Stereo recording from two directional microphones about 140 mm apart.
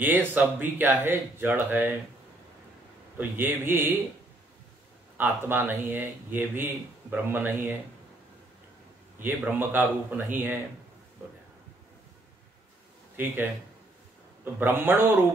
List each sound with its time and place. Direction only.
0.0 s speech: 15° right (ahead or behind)
3.2 s speech: 15° right (ahead or behind)
5.1 s speech: 15° right (ahead or behind)
9.2 s speech: 15° right (ahead or behind)
13.1 s speech: 15° right (ahead or behind)